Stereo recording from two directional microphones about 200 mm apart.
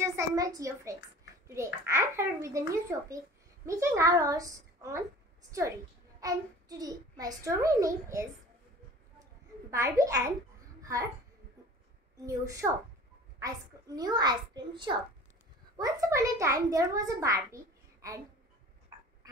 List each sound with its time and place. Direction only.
0.0 s a woman's voice: 15° right (ahead or behind)
3.6 s a child's voice: 15° right (ahead or behind)
6.2 s a child's voice: 20° right (ahead or behind)
9.7 s a child's voice: 15° right (ahead or behind)
10.8 s a sound: 15° right (ahead or behind)
12.3 s a child's voice: 15° right (ahead or behind)